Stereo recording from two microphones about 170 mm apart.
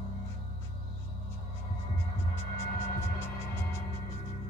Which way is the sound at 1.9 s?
15° left (ahead or behind).